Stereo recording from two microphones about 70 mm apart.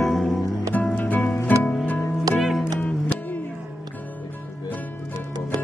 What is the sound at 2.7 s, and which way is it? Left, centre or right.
Music, centre.